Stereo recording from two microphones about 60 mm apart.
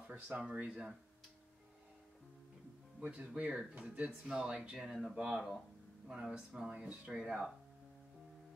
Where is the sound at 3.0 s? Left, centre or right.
Right; by 5.6 s centre.